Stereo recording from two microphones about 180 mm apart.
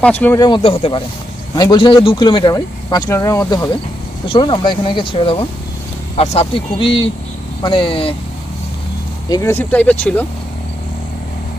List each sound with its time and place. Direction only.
0.0 s speech: 10° left (ahead or behind)
0.6 s speech: 30° left (ahead or behind)
9.3 s speech: 15° left (ahead or behind)